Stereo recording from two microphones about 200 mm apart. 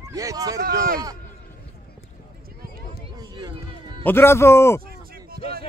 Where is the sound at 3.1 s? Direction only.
20° right (ahead or behind).